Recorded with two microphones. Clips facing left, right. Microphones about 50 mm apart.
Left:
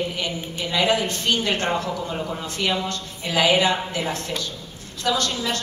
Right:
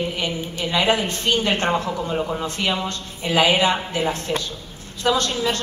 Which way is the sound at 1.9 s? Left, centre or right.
Centre.